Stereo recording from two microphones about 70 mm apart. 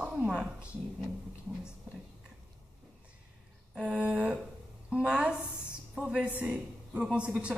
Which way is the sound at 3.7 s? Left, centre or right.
Centre.